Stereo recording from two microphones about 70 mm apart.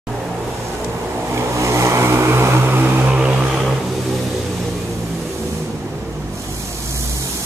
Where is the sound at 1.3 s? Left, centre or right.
Right.